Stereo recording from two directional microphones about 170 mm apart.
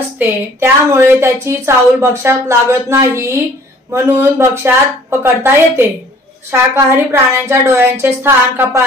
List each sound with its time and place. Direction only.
0.2 s speech: 15° right (ahead or behind)